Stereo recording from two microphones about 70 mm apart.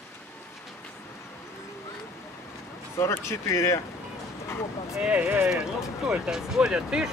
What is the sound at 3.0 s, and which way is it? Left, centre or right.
Speech, left.